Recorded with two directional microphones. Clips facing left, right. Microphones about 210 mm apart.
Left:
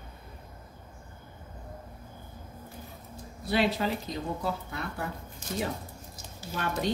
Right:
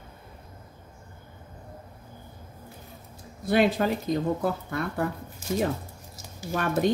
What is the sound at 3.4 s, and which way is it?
Speech, 50° right (ahead or behind).